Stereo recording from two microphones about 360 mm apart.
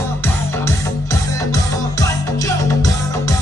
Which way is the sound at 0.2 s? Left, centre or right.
Centre.